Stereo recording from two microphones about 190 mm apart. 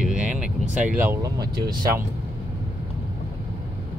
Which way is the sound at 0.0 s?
5° right (ahead or behind).